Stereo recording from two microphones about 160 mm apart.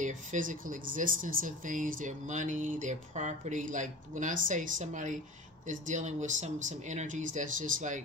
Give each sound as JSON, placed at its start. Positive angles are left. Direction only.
{"t": 0.0, "sound": "speech", "side_deg": -55}